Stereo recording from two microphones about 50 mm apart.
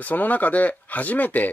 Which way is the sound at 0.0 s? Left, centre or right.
Left.